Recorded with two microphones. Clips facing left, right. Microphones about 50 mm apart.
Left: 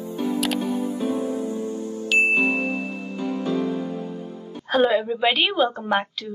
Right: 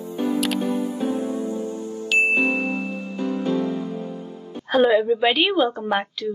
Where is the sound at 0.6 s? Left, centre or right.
Right.